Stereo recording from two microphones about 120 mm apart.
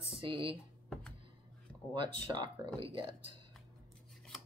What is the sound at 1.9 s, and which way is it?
Speech, 40° right (ahead or behind).